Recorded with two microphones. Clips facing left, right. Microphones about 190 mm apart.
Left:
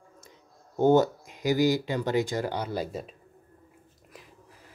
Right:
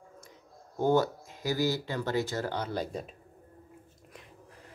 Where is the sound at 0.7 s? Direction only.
20° left (ahead or behind); by 3.1 s 5° left (ahead or behind).